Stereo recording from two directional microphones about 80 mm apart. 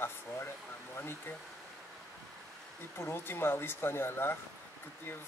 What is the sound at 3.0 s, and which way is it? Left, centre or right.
Speech, left.